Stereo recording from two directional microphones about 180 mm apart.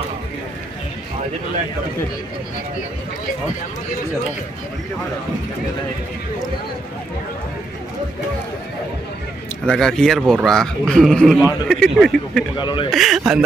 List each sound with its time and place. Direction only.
9.7 s a man's voice: 5° left (ahead or behind)
12.5 s a man's voice: 25° left (ahead or behind)
12.9 s a man's voice: centre (ahead or behind)